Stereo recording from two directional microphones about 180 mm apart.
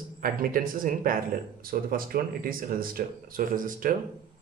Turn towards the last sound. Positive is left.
turn(degrees=-50)  # may be behind; listen again after turning